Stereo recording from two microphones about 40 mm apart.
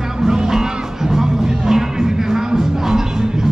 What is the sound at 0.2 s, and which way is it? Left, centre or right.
Music, centre.